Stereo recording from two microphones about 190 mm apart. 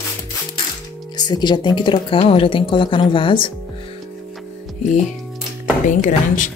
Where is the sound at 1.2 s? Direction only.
20° left (ahead or behind).